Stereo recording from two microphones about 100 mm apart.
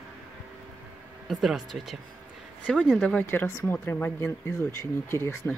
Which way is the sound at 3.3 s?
25° left (ahead or behind).